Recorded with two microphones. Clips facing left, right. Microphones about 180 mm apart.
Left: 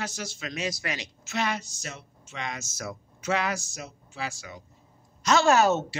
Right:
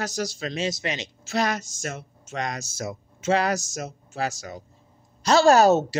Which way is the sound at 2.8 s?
25° right (ahead or behind).